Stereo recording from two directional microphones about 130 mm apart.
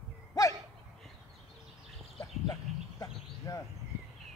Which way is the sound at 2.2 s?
25° left (ahead or behind).